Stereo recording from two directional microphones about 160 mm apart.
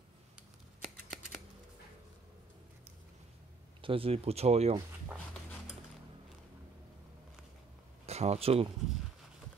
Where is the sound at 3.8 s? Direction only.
35° right (ahead or behind).